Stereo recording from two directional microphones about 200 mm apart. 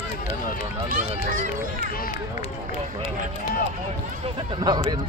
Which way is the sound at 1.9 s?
45° left (ahead or behind).